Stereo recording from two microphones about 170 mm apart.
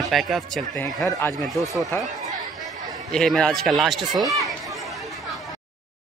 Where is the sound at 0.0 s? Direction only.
Centre (ahead or behind).